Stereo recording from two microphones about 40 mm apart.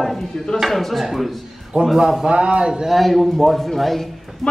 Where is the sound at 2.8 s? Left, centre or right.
Centre.